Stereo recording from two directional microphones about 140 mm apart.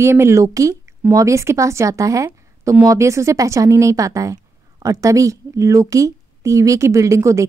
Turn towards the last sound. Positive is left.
turn(degrees=-20)  # may be behind; listen again after turning